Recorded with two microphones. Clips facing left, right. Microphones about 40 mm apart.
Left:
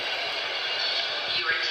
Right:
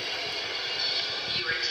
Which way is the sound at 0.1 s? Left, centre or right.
Left.